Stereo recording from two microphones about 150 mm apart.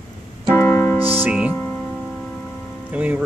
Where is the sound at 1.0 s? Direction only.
15° right (ahead or behind).